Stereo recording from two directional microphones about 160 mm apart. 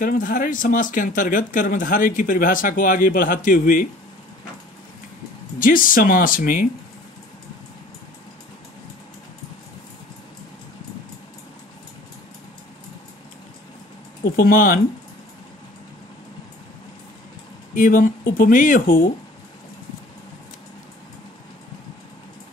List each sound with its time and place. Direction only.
0.0 s speech: 60° left (ahead or behind)
5.6 s speech: 60° left (ahead or behind)
14.3 s speech: 60° left (ahead or behind)
17.7 s speech: 55° left (ahead or behind)